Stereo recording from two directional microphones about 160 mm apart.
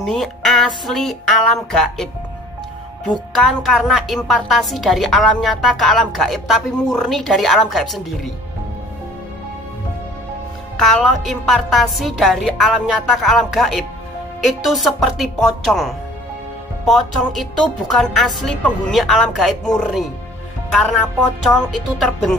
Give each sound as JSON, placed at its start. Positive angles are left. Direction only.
{"t": 0.0, "sound": "a woman's voice", "side_deg": 0}
{"t": 3.3, "sound": "a woman's voice", "side_deg": 0}
{"t": 10.8, "sound": "a woman's voice", "side_deg": 0}